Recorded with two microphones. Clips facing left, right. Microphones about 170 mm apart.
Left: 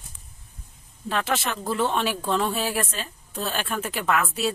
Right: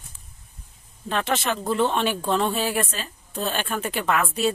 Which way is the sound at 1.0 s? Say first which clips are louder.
Right 2 dB; centre (ahead or behind).